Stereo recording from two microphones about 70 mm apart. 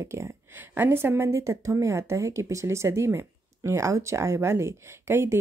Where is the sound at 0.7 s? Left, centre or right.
Right.